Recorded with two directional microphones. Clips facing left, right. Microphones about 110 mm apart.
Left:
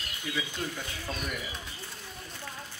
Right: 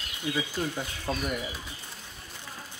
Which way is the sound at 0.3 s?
30° right (ahead or behind).